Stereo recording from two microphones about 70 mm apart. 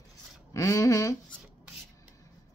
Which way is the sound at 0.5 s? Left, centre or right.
Left.